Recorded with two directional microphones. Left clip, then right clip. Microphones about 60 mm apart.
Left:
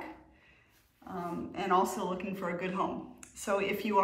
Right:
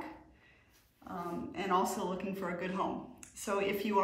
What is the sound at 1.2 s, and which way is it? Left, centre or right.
Speech, right.